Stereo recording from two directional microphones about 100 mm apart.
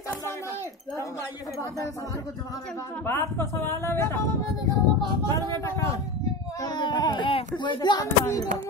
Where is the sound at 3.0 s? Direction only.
25° left (ahead or behind).